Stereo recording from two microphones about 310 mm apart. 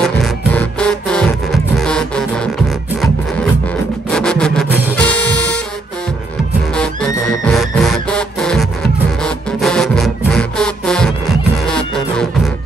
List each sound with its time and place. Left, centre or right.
0.0 s music: centre
4.1 s music: centre
6.7 s music: centre